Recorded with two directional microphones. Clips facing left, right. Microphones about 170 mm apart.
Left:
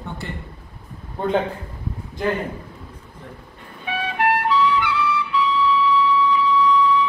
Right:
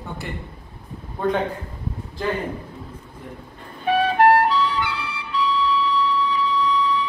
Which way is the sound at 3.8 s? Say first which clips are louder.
Right 6 dB; 40° right (ahead or behind).